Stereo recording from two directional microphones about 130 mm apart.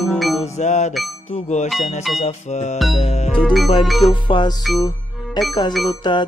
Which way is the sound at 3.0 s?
55° left (ahead or behind).